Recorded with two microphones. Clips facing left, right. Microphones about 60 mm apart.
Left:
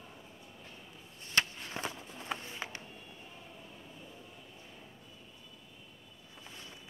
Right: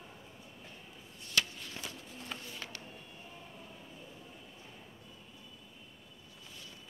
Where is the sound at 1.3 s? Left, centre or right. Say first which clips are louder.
Left 2 dB; left.